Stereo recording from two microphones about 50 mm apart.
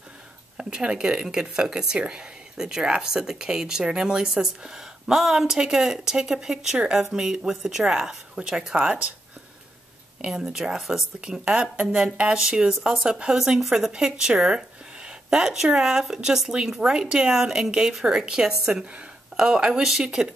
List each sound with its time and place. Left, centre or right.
0.6 s a woman's voice: centre
10.2 s a woman's voice: centre
11.1 s speech: right
12.0 s a woman's voice: centre